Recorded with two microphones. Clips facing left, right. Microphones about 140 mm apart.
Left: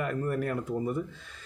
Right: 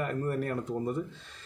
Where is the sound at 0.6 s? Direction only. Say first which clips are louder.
Left 1 dB; 5° left (ahead or behind).